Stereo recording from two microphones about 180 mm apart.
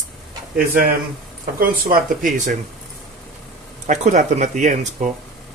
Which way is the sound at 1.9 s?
50° right (ahead or behind).